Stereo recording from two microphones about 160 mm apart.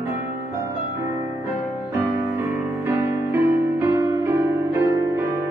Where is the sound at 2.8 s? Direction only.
15° right (ahead or behind).